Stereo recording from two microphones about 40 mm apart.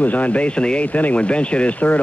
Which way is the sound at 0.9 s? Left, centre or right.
Left.